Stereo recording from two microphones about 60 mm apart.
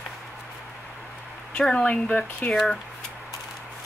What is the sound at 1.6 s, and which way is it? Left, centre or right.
Speech, centre.